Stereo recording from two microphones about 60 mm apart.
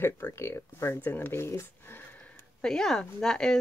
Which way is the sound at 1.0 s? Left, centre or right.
Left.